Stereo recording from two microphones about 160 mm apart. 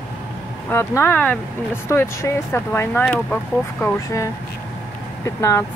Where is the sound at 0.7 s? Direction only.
15° left (ahead or behind).